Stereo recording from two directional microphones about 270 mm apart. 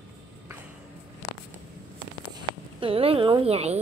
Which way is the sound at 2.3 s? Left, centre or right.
Centre.